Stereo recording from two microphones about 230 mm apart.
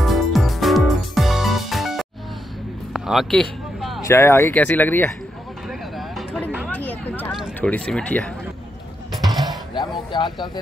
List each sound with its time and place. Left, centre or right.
0.0 s music: centre
2.9 s a sound: centre
4.0 s speech: centre
5.9 s vehicle: centre
6.7 s a sound: centre
10.1 s speech: centre